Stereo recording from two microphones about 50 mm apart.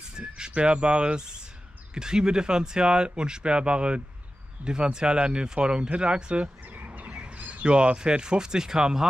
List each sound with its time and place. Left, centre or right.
0.2 s speech: right
4.6 s speech: right
4.9 s speech: centre
6.7 s bird: right; by 9.0 s centre